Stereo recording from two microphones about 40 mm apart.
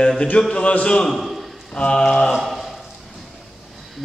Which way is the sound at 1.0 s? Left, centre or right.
Centre.